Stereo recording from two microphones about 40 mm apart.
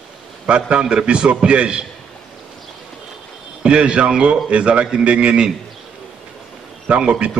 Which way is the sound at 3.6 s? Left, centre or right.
Right.